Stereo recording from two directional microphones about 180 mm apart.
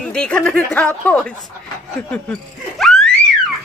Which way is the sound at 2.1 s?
5° left (ahead or behind).